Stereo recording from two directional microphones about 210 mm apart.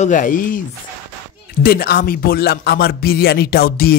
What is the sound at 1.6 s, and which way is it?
A man's voice, 45° left (ahead or behind).